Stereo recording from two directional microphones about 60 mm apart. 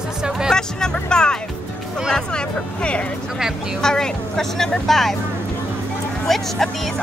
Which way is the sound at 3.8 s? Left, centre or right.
Centre.